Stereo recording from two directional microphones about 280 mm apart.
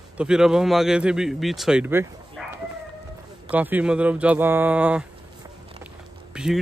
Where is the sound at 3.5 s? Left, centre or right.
Centre.